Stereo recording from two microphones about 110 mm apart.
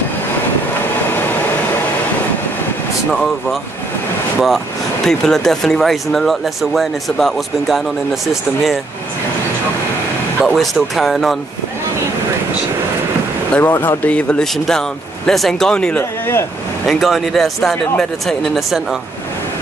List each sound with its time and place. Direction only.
5.0 s speech: 5° left (ahead or behind)
10.4 s speech: centre (ahead or behind)
13.5 s speech: 20° left (ahead or behind)
14.4 s speech: 5° left (ahead or behind)
16.0 s speech: 20° left (ahead or behind)
16.8 s speech: centre (ahead or behind)